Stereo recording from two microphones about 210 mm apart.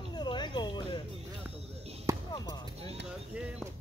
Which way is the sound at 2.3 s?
20° left (ahead or behind).